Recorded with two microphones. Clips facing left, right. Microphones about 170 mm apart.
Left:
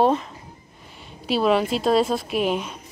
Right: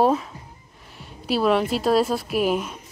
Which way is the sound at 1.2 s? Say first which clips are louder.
Even; centre (ahead or behind).